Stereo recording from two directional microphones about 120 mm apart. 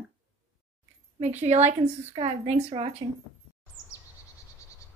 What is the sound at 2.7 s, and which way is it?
Speech, 55° right (ahead or behind).